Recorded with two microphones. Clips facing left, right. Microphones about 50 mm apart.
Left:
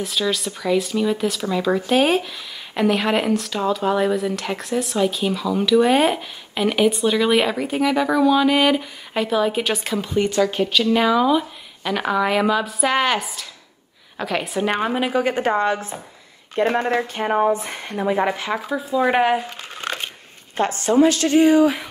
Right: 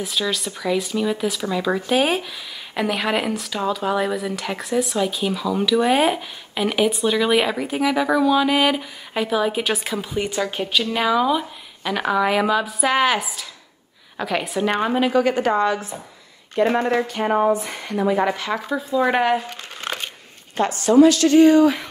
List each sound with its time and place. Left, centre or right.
0.0 s speech: centre
15.2 s speech: left
18.0 s speech: centre
20.5 s speech: left
21.4 s speech: centre